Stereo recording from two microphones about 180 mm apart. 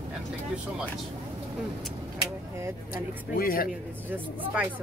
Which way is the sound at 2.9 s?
55° left (ahead or behind).